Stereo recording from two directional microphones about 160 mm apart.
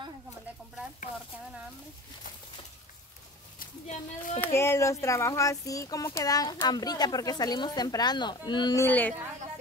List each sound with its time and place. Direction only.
3.5 s speech: 50° left (ahead or behind)
4.4 s speech: 15° left (ahead or behind)
8.8 s speech: 10° left (ahead or behind)